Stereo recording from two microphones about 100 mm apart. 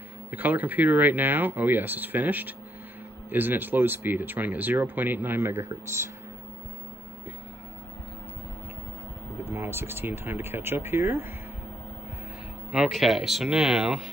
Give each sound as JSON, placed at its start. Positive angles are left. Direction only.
{"t": 0.3, "sound": "speech", "side_deg": -20}
{"t": 9.4, "sound": "speech", "side_deg": -25}
{"t": 12.7, "sound": "speech", "side_deg": 0}